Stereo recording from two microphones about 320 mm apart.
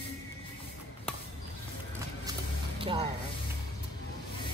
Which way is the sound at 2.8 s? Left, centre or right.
Centre.